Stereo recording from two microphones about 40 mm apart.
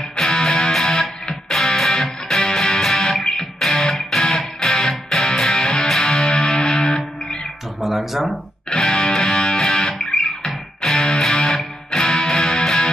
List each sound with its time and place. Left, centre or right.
0.2 s music: centre
7.8 s a sound: centre
8.6 s music: left